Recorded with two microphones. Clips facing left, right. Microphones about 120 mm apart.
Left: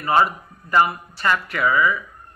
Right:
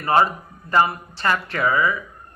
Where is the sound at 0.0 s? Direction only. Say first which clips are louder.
Even; 30° right (ahead or behind).